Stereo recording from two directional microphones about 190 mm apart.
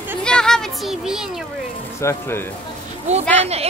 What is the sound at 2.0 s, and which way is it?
Speech, 15° left (ahead or behind).